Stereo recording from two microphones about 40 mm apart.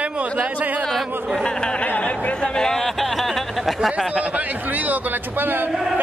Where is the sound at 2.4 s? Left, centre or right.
Centre.